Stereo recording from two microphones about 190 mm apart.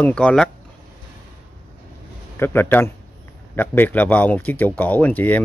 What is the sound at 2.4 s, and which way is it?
Speech, 10° left (ahead or behind).